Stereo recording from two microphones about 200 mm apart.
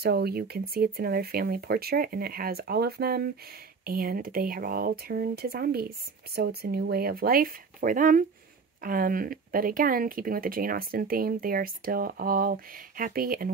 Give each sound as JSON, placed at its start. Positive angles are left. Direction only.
{"t": 0.0, "sound": "speech", "side_deg": -50}